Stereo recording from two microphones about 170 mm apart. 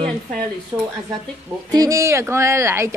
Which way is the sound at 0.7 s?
25° right (ahead or behind).